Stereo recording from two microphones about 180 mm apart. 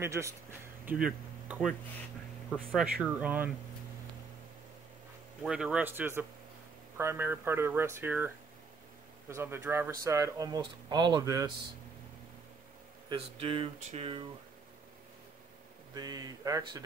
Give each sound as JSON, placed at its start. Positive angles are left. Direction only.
{"t": 0.0, "sound": "speech", "side_deg": -15}
{"t": 5.4, "sound": "speech", "side_deg": -5}
{"t": 9.3, "sound": "speech", "side_deg": -15}
{"t": 13.1, "sound": "a sound", "side_deg": -30}
{"t": 15.9, "sound": "speech", "side_deg": -20}